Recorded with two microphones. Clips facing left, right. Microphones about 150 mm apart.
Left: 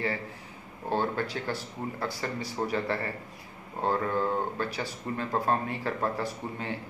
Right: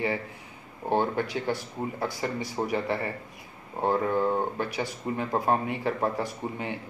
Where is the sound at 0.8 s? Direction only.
15° right (ahead or behind).